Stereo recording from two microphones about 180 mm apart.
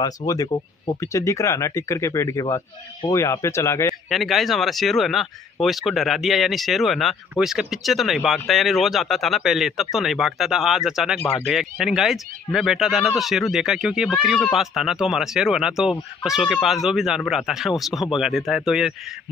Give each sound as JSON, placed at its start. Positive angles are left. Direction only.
{"t": 0.3, "sound": "speech", "side_deg": 20}
{"t": 4.1, "sound": "speech", "side_deg": 0}